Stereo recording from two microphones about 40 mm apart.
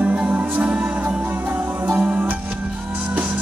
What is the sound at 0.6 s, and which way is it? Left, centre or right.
Music, right.